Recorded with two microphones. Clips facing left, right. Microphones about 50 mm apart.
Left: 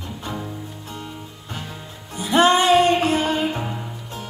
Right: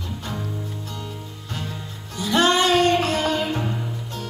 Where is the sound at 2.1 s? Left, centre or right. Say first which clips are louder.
Left 3 dB; left.